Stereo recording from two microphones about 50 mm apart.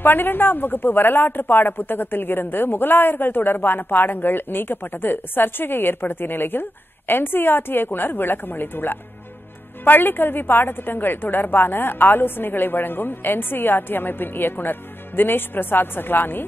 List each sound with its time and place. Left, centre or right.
0.0 s speech: left